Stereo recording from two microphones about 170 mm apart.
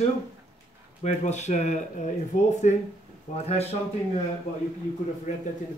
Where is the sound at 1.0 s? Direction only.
40° left (ahead or behind).